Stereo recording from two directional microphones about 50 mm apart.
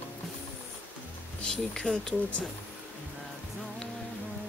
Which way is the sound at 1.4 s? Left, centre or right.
Centre.